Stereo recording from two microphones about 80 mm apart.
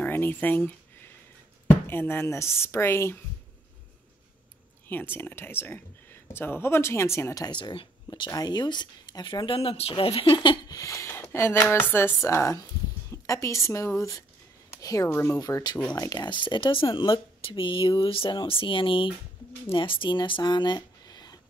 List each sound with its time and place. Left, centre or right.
0.0 s a sound: left
1.9 s speech: left
4.8 s speech: left
7.4 s speech: left
8.3 s speech: left
10.7 s speech: left
13.1 s a sound: left
13.7 s speech: left
15.0 s speech: left
15.3 s speech: left